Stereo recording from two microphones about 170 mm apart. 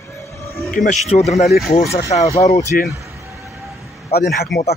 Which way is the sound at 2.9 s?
15° right (ahead or behind).